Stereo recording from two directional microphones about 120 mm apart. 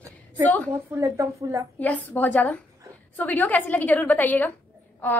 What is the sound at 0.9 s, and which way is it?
Speech, 25° right (ahead or behind).